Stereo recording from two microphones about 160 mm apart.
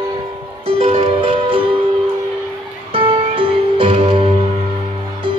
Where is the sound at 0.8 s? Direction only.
40° right (ahead or behind).